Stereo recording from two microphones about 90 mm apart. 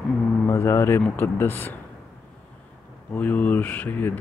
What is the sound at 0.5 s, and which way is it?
Speech, 30° left (ahead or behind).